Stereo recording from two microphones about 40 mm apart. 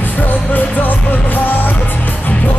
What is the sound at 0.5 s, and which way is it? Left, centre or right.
Music, left.